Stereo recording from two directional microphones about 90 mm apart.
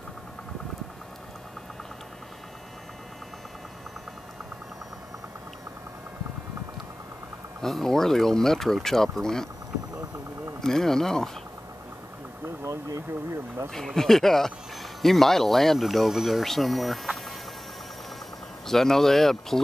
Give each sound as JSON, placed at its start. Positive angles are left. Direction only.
{"t": 7.6, "sound": "speech", "side_deg": 5}
{"t": 10.6, "sound": "speech", "side_deg": 5}
{"t": 12.6, "sound": "speech", "side_deg": -35}
{"t": 13.7, "sound": "speech", "side_deg": 5}
{"t": 18.7, "sound": "speech", "side_deg": 5}